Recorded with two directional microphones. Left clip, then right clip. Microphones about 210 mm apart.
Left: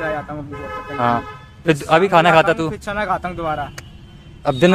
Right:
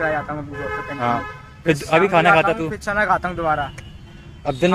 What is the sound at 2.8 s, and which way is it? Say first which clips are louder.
Speech: right 5 dB; 10° left (ahead or behind).